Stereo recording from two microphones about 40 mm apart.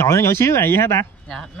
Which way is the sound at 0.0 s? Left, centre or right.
Left.